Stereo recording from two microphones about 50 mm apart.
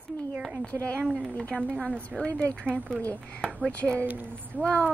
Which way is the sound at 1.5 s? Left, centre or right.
Centre.